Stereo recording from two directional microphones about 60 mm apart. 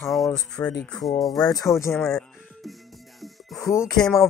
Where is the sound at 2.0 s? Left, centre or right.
Centre.